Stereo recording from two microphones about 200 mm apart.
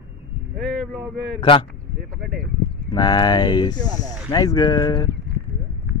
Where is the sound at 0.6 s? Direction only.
Centre (ahead or behind).